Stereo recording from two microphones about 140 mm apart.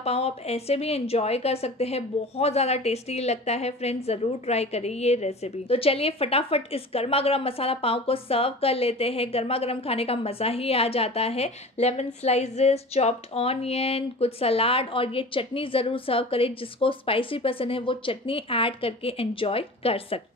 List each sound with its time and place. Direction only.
0.0 s a woman's voice: 50° left (ahead or behind)